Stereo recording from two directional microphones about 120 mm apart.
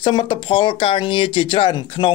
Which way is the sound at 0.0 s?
45° left (ahead or behind).